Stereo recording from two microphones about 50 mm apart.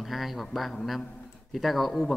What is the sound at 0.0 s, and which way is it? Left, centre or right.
Speech, centre.